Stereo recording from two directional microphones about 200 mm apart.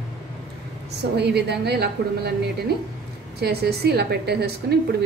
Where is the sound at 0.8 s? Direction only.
55° right (ahead or behind).